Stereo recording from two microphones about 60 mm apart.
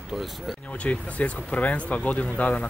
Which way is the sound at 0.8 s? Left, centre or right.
Left.